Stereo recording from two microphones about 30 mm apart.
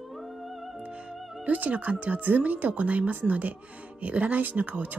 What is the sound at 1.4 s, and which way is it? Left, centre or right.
Speech, right.